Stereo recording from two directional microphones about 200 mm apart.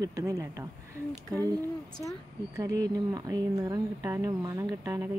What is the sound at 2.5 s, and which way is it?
Speech, 15° right (ahead or behind).